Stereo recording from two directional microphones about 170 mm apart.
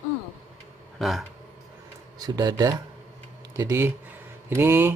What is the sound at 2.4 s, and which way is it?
Speech, 20° right (ahead or behind).